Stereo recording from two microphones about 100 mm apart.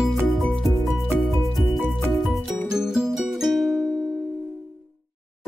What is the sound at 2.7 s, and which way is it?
Music, 5° right (ahead or behind).